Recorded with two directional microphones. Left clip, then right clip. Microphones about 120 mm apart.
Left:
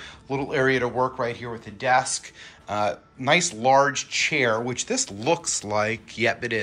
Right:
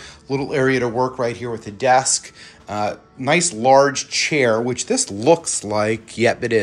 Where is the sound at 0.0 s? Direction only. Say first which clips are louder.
Right 5 dB; 25° right (ahead or behind).